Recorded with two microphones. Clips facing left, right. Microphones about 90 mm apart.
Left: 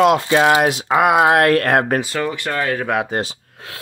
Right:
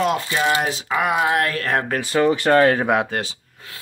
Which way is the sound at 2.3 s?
35° right (ahead or behind).